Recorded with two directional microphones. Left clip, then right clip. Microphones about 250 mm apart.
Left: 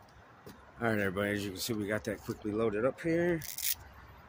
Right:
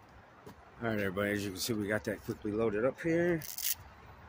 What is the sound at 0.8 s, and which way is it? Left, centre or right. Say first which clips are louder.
Speech: left 2 dB; centre.